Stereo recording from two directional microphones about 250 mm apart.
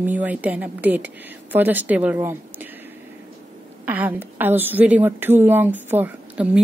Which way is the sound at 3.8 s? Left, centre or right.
Centre.